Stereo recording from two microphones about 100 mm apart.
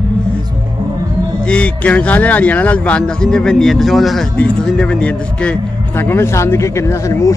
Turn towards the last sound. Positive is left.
turn(degrees=30)  # may be behind; listen again after turning